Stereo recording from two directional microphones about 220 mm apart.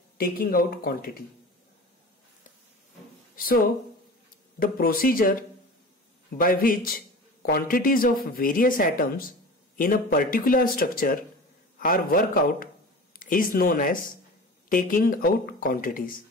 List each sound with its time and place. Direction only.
0.2 s speech: 40° left (ahead or behind)
4.6 s speech: 40° left (ahead or behind)
6.3 s speech: 40° left (ahead or behind)